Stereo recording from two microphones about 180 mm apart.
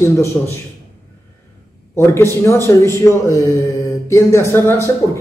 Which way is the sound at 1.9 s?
15° left (ahead or behind).